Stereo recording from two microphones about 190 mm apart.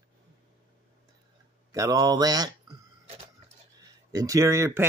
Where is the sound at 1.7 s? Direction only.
20° right (ahead or behind).